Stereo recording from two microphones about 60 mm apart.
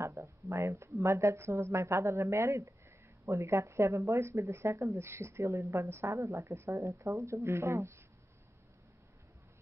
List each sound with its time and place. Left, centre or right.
0.0 s speech: right
1.0 s a woman's voice: right
5.9 s speech: right
7.4 s a woman's voice: right